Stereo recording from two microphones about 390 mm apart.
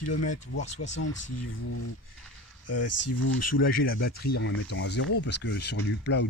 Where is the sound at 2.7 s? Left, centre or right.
Left.